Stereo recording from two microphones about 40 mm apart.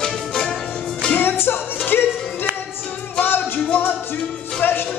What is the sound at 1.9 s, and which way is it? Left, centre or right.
Music, left.